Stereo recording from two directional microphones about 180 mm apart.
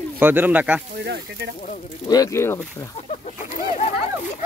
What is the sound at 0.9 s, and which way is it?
Speech, 65° right (ahead or behind).